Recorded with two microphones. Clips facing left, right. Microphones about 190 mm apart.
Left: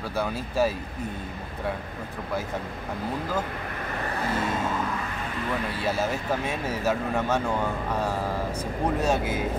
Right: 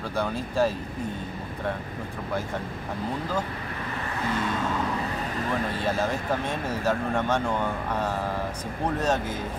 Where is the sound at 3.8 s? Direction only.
45° left (ahead or behind).